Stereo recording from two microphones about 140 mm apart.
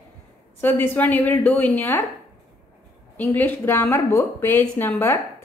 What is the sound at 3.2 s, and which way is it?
Speech, 15° left (ahead or behind).